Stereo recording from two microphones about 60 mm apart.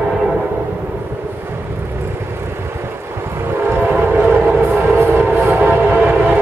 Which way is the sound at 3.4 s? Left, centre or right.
Right.